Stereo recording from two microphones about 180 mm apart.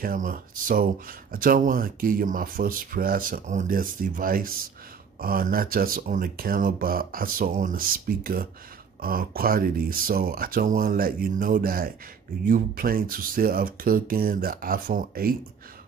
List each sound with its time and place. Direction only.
0.0 s speech: 50° right (ahead or behind)